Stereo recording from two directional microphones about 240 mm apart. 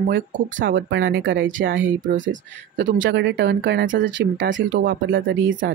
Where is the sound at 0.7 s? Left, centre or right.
Right.